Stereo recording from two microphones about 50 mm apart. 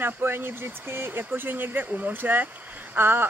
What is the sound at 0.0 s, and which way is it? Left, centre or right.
Speech, right.